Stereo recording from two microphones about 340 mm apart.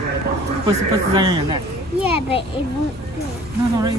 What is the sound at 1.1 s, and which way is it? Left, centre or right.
Speech, centre.